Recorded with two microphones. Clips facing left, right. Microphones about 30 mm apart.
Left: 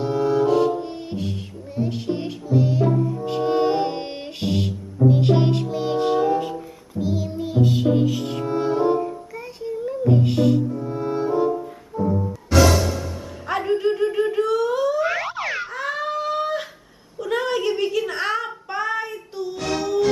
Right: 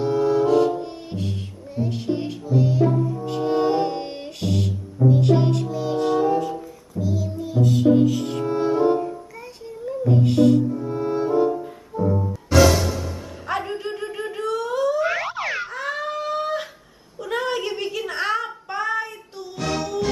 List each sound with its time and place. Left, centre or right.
0.0 s music: centre
7.0 s music: left; by 12.5 s centre
13.5 s boing: centre
17.2 s a sound: centre